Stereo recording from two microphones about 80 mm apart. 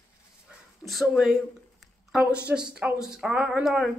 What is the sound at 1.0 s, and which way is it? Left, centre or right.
Speech, centre.